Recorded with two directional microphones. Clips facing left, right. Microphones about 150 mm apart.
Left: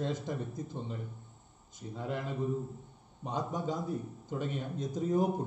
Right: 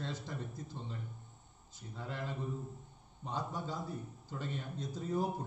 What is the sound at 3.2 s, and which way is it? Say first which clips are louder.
A man's voice: left 5 dB; 20° left (ahead or behind).